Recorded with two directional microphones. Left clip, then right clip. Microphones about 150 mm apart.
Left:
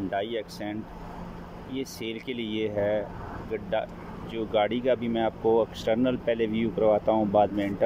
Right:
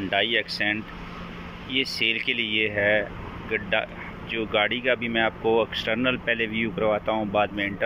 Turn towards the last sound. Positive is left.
turn(degrees=35)  # may be behind; listen again after turning